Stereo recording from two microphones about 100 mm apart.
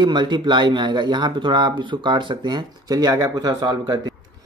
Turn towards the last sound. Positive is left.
turn(degrees=-45)  # may be behind; listen again after turning